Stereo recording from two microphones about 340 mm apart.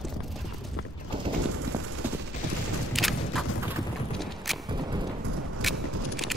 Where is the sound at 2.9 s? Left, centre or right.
Centre.